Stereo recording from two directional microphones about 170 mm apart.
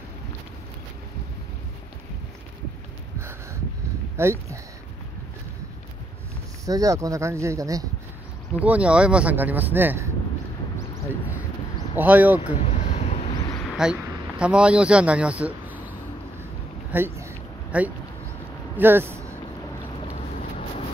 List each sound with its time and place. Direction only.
4.2 s speech: 15° right (ahead or behind)
6.6 s speech: 20° right (ahead or behind)
8.5 s speech: 10° right (ahead or behind)
12.0 s speech: 10° right (ahead or behind)
12.5 s a sound: 40° left (ahead or behind)
13.7 s a sound: 5° right (ahead or behind)
14.4 s speech: 5° right (ahead or behind)
16.9 s a sound: 10° right (ahead or behind)
18.8 s speech: 10° right (ahead or behind)